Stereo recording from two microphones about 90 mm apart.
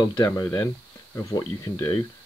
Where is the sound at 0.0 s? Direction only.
45° left (ahead or behind).